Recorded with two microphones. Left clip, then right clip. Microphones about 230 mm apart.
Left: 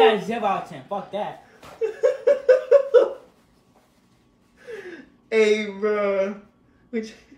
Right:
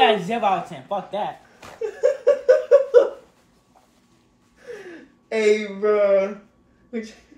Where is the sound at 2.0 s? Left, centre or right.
Centre.